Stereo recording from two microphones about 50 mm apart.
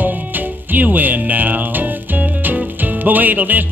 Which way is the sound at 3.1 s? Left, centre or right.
Right.